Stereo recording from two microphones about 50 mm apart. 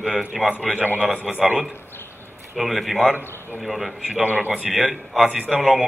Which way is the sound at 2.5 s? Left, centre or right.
Centre.